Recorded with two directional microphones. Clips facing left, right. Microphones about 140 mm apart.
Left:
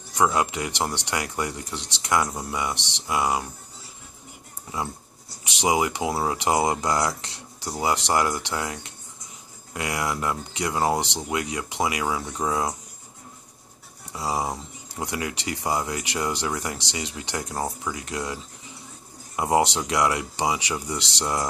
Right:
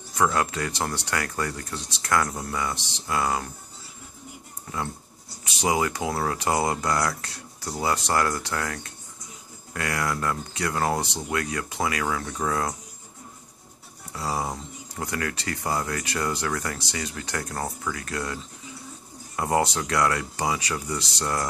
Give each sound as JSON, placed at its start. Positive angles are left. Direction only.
{"t": 0.1, "sound": "speech", "side_deg": 20}
{"t": 5.6, "sound": "speech", "side_deg": 20}
{"t": 14.1, "sound": "speech", "side_deg": 15}